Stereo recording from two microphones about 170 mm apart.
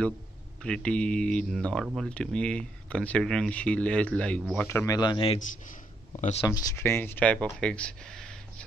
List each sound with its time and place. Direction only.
0.6 s speech: 5° left (ahead or behind)
4.6 s a man's voice: 15° left (ahead or behind)
6.4 s speech: 20° left (ahead or behind); by 8.6 s 5° left (ahead or behind)